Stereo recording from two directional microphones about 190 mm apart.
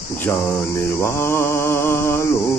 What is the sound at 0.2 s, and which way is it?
Mantra, 15° left (ahead or behind).